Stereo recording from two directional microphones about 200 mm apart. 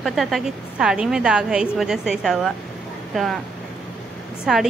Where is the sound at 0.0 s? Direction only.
Centre (ahead or behind).